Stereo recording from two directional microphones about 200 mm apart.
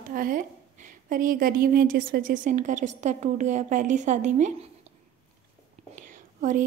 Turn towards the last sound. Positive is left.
turn(degrees=-40)  # may be behind; listen again after turning